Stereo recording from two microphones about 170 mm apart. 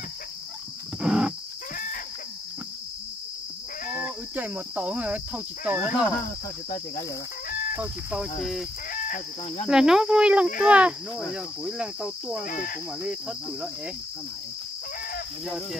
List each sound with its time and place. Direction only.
1.0 s a sound: 5° right (ahead or behind)
4.0 s cricket: 10° right (ahead or behind)
7.7 s speech: 10° right (ahead or behind)
8.9 s chicken: 55° left (ahead or behind)
9.7 s speech: 5° right (ahead or behind)
12.4 s speech: 55° left (ahead or behind)
13.0 s cricket: 5° right (ahead or behind)
15.4 s speech: centre (ahead or behind)